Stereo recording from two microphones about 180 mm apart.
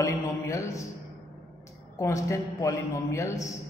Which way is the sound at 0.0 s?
15° left (ahead or behind).